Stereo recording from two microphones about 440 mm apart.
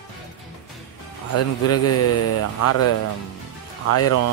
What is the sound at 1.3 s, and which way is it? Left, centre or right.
Speech, left.